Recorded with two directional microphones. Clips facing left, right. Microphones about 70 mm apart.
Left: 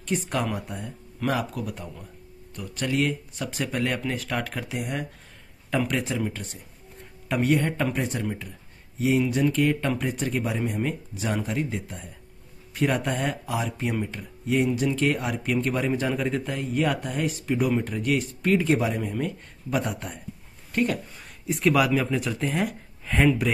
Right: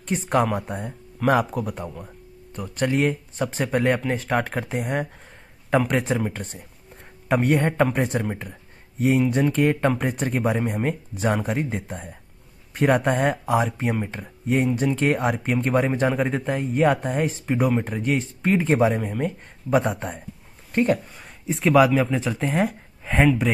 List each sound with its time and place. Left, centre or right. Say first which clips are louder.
0.0 s speech: right 5 dB; right
15.9 s speech: right 3 dB; right
21.5 s speech: right 4 dB; centre
22.4 s speech: right 6 dB; right